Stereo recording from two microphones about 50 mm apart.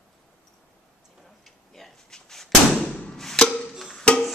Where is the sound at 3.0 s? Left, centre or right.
Centre.